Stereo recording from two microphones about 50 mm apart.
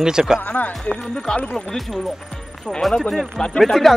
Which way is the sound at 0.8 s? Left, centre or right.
Centre.